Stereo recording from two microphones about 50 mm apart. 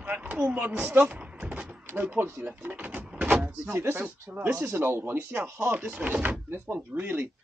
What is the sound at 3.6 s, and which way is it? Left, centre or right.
Speech, right.